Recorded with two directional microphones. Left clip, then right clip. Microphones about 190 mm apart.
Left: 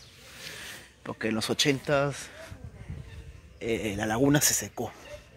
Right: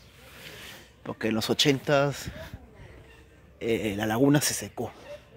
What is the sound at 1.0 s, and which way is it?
Speech, 10° right (ahead or behind).